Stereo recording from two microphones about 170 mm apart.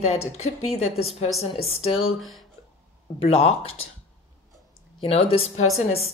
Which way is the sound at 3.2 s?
35° left (ahead or behind).